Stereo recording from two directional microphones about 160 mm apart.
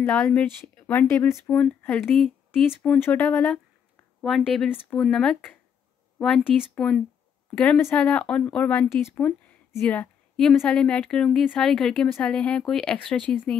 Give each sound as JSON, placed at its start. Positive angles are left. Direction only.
{"t": 0.0, "sound": "speech", "side_deg": 10}